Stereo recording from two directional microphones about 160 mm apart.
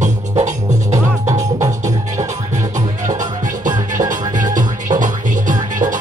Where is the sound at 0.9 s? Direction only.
20° right (ahead or behind).